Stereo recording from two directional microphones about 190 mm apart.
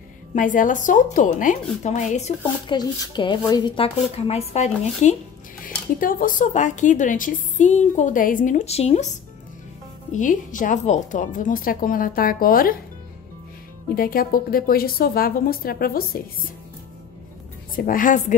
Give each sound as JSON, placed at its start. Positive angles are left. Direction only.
{"t": 0.3, "sound": "speech", "side_deg": 45}
{"t": 2.6, "sound": "speech", "side_deg": 25}
{"t": 5.9, "sound": "a woman's voice", "side_deg": 45}
{"t": 10.1, "sound": "speech", "side_deg": 45}
{"t": 13.9, "sound": "speech", "side_deg": 50}
{"t": 17.7, "sound": "speech", "side_deg": 45}